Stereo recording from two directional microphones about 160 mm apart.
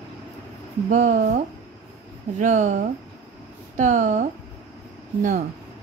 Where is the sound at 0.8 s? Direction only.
50° right (ahead or behind).